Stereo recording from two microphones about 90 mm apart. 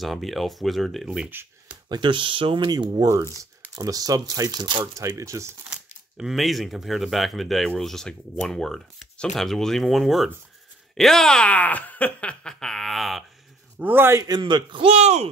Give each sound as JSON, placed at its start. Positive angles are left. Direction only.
{"t": 0.0, "sound": "speech", "side_deg": 0}
{"t": 1.9, "sound": "speech", "side_deg": -65}
{"t": 2.7, "sound": "speech", "side_deg": -50}
{"t": 4.9, "sound": "speech", "side_deg": -35}
{"t": 5.7, "sound": "speech", "side_deg": -5}
{"t": 13.7, "sound": "a man's voice", "side_deg": -20}
{"t": 14.4, "sound": "speech", "side_deg": -65}